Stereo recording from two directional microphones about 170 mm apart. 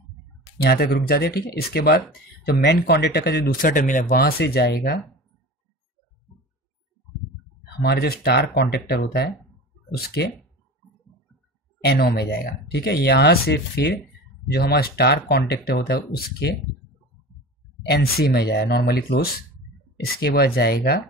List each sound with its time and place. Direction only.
0.7 s speech: 65° left (ahead or behind)
7.8 s speech: 65° left (ahead or behind)
11.8 s speech: 70° left (ahead or behind)
17.8 s speech: 70° left (ahead or behind)